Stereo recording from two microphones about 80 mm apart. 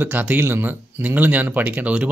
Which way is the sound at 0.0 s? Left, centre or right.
Right.